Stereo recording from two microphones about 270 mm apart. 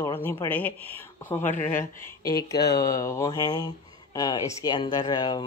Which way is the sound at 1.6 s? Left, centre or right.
Left.